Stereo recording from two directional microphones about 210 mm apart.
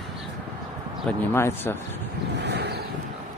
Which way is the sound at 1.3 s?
10° left (ahead or behind).